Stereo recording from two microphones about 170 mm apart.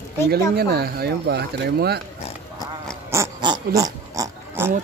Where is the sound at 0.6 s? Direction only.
70° right (ahead or behind).